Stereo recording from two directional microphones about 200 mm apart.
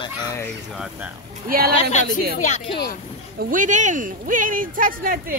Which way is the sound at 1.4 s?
50° right (ahead or behind).